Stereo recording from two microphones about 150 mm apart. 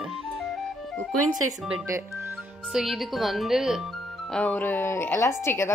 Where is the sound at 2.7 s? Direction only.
Centre (ahead or behind).